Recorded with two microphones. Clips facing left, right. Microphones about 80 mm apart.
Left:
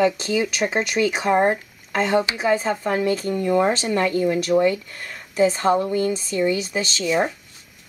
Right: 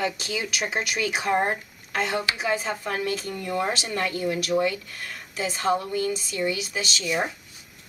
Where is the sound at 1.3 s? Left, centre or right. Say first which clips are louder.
Left 5 dB; centre.